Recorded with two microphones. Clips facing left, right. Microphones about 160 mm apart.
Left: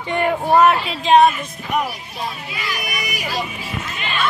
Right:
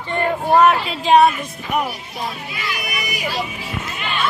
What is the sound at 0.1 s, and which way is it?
Speech, 15° left (ahead or behind).